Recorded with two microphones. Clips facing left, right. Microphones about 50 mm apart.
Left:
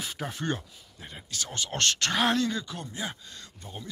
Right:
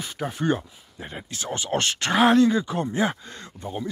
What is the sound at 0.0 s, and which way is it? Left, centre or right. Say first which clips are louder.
Speech: right 6 dB; centre.